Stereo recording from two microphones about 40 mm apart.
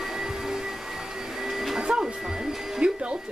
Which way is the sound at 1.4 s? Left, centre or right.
Centre.